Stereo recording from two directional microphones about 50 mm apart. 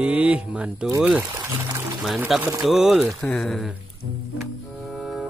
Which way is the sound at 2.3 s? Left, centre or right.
Centre.